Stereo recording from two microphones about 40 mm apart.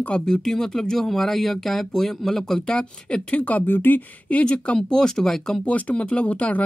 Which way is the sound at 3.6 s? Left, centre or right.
Left.